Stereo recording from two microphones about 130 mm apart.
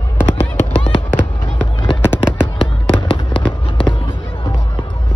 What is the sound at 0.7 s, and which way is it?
Honk, 45° left (ahead or behind).